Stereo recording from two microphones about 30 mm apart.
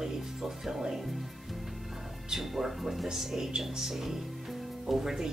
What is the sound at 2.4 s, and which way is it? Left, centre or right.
Speech, centre.